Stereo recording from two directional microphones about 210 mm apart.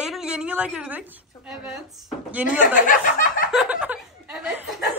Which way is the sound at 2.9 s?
40° left (ahead or behind).